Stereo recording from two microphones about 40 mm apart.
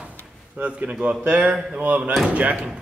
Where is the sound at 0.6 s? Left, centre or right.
Right.